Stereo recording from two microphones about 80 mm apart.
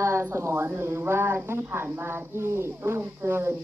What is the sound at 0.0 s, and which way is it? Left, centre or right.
Speech, right.